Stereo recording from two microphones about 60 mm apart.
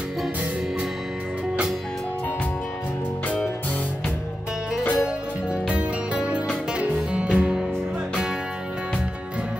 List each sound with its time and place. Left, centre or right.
4.9 s music: centre